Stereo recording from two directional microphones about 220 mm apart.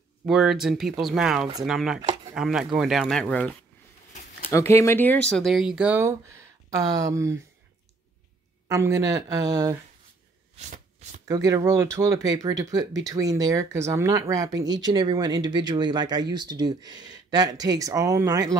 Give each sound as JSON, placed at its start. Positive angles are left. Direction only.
{"t": 0.2, "sound": "speech", "side_deg": 0}
{"t": 8.6, "sound": "speech", "side_deg": -15}
{"t": 10.6, "sound": "shuffling cards", "side_deg": -35}
{"t": 11.2, "sound": "speech", "side_deg": -15}